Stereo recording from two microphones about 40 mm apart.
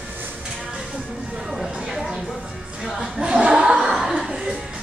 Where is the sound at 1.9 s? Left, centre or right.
Centre.